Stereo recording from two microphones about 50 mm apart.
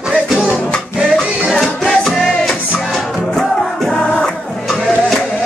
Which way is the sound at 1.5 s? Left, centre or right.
Centre.